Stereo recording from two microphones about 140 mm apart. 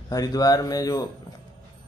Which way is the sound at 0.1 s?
25° left (ahead or behind).